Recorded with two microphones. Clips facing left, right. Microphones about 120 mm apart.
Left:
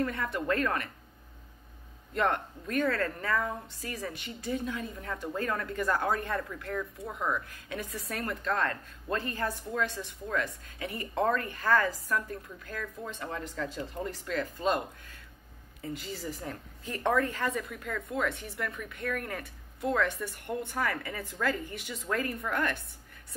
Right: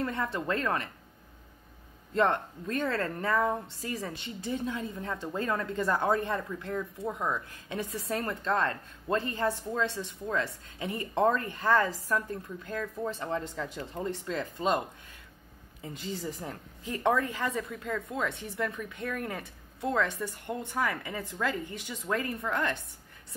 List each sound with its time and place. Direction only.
0.0 s a woman's voice: 25° right (ahead or behind)
2.1 s a woman's voice: 30° right (ahead or behind)
15.8 s a woman's voice: 20° right (ahead or behind)
17.6 s a woman's voice: 25° right (ahead or behind)